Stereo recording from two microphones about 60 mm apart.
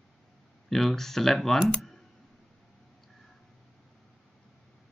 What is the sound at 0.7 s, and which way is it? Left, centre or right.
Speech, centre.